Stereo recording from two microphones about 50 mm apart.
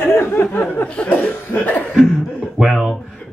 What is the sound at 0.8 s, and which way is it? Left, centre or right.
Chuckle, left.